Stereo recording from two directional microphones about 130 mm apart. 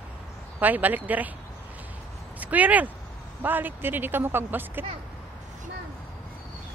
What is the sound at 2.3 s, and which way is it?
Speech, 10° right (ahead or behind).